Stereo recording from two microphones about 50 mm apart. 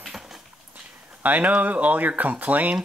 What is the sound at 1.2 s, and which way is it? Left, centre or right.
Speech, right.